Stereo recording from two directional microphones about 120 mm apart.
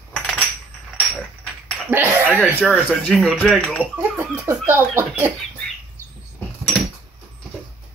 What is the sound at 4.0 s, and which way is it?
Speech, 15° right (ahead or behind).